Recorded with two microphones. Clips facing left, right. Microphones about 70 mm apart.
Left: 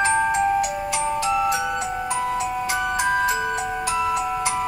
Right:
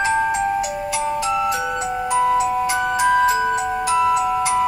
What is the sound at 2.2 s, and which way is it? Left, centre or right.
Music, right.